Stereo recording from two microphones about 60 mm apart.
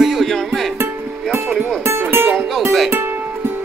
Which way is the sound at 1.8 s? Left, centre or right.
Right.